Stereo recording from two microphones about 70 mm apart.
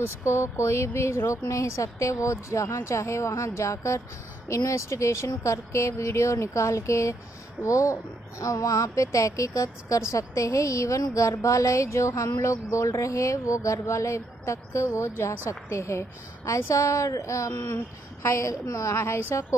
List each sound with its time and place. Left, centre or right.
0.0 s a woman's voice: left